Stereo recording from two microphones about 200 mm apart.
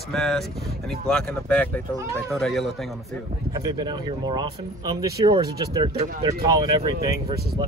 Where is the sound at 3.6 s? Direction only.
20° right (ahead or behind).